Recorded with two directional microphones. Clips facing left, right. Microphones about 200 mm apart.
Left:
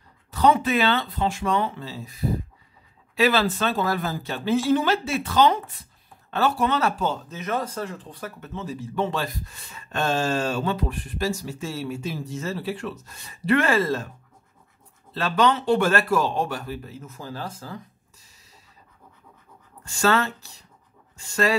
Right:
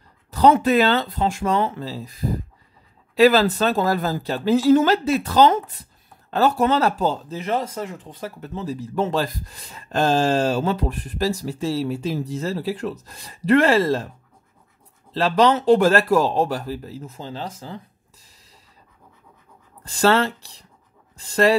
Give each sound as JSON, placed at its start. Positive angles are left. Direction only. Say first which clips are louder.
{"t": 0.3, "sound": "speech", "louder": "right 4 dB", "side_deg": -40}
{"t": 3.2, "sound": "speech", "louder": "right 6 dB", "side_deg": -40}
{"t": 8.4, "sound": "speech", "louder": "right 5 dB", "side_deg": -40}
{"t": 15.1, "sound": "speech", "louder": "right 4 dB", "side_deg": -35}
{"t": 19.8, "sound": "speech", "louder": "right 4 dB", "side_deg": -35}